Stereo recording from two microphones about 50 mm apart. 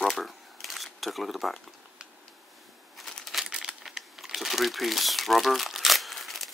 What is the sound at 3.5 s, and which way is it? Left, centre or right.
Crumpling, centre.